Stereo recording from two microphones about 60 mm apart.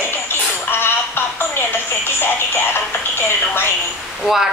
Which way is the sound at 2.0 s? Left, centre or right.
Left.